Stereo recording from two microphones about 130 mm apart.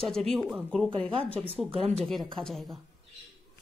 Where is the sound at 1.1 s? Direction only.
45° right (ahead or behind).